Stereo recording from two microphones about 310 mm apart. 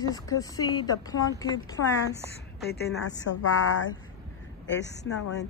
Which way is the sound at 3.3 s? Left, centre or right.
Left.